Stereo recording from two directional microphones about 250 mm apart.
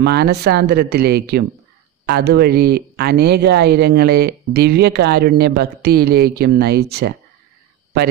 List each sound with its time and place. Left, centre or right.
0.0 s speech: right